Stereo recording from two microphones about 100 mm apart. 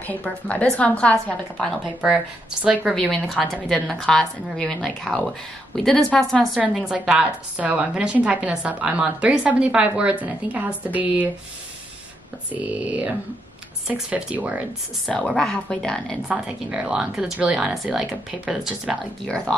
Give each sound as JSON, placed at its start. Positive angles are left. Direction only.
{"t": 0.0, "sound": "speech", "side_deg": 15}
{"t": 2.0, "sound": "a woman's voice", "side_deg": -5}
{"t": 3.6, "sound": "a woman's voice", "side_deg": 0}
{"t": 12.5, "sound": "a woman's voice", "side_deg": -15}
{"t": 15.0, "sound": "speech", "side_deg": 5}
{"t": 16.3, "sound": "a woman's voice", "side_deg": -10}
{"t": 19.2, "sound": "speech", "side_deg": 10}